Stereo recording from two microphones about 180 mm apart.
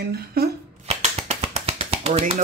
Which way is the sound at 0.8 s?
35° right (ahead or behind).